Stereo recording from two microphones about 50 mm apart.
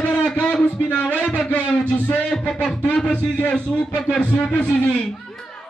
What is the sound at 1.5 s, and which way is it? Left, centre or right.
A man's voice, left.